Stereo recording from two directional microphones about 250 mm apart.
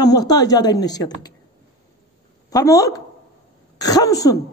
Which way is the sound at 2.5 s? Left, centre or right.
Centre.